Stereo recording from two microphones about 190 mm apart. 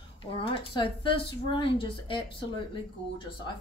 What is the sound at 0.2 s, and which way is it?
Speech, 25° left (ahead or behind).